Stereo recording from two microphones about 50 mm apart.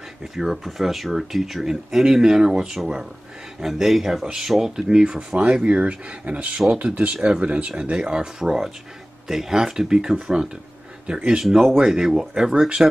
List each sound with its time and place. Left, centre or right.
0.2 s speech: centre
3.6 s speech: centre
11.4 s speech: centre